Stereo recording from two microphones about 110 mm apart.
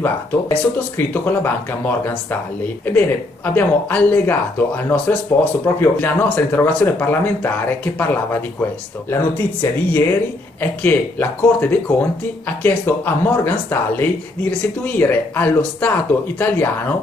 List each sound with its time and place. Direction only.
0.0 s speech: 15° left (ahead or behind)